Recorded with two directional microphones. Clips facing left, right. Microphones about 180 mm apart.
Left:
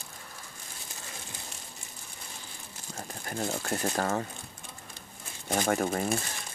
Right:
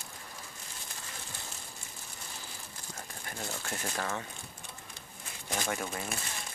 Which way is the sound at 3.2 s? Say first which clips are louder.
Left 8 dB; 40° left (ahead or behind).